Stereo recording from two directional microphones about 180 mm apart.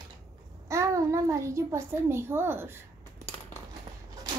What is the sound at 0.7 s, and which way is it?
A child's voice, 15° right (ahead or behind).